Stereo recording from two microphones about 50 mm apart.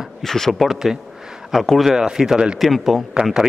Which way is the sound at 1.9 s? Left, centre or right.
Centre.